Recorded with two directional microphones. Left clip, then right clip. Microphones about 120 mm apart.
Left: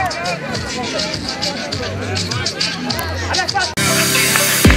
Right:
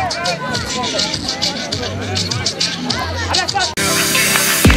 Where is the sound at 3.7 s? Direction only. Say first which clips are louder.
Even; centre (ahead or behind).